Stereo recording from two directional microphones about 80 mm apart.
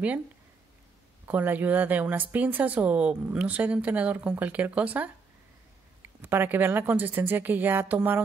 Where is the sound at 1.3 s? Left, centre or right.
Right.